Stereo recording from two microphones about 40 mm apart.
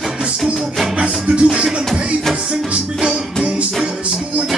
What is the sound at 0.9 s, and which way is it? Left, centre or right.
Music, right.